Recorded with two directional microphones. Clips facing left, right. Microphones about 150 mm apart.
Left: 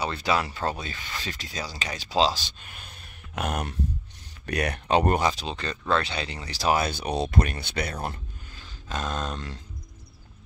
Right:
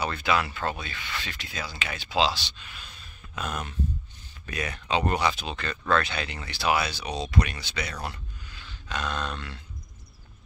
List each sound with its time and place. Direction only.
0.0 s speech: 30° left (ahead or behind); by 5.3 s 50° left (ahead or behind)
5.3 s speech: 30° left (ahead or behind); by 7.9 s 55° left (ahead or behind)
8.0 s a sound: 45° left (ahead or behind)